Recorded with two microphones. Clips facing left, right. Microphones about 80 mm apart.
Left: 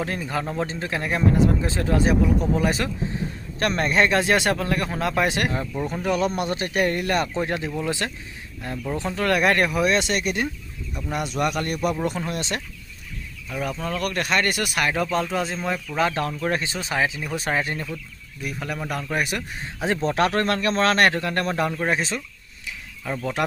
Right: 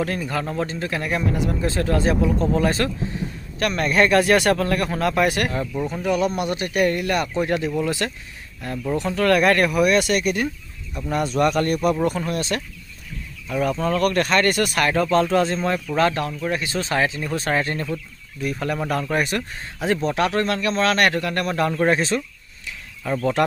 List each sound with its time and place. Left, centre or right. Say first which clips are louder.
0.0 s speech: right 2 dB; centre
5.8 s speech: right 2 dB; centre
6.0 s speech: right 2 dB; left
11.0 s speech: right 5 dB; centre
13.5 s speech: right 6 dB; centre
16.3 s speech: even; left
16.6 s speech: right 3 dB; centre
19.8 s speech: right 1 dB; left
21.8 s speech: right 5 dB; centre